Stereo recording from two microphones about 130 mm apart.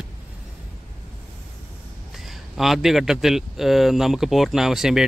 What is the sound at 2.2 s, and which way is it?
A man's voice, centre (ahead or behind).